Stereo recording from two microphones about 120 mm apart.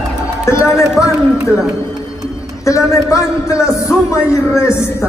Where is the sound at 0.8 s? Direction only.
25° left (ahead or behind).